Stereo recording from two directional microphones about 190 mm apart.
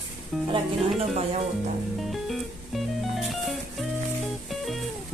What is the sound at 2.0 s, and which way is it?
Music, centre (ahead or behind).